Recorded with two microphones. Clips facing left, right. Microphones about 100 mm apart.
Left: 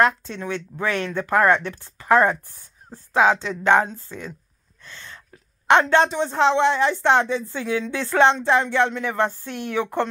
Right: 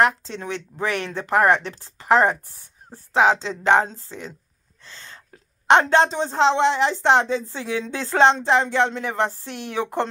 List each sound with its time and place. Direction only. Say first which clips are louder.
0.0 s speech: even; 30° right (ahead or behind)
4.8 s a sound: left 2 dB; 30° right (ahead or behind)
5.7 s speech: right 1 dB; 30° right (ahead or behind)